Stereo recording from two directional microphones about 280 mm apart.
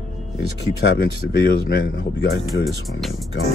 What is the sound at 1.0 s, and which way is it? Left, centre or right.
Speech, left.